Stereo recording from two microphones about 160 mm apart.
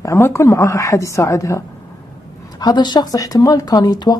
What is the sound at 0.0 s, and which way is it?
Speech, 20° left (ahead or behind).